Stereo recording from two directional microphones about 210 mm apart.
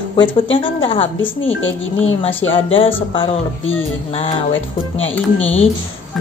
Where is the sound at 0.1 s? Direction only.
25° left (ahead or behind).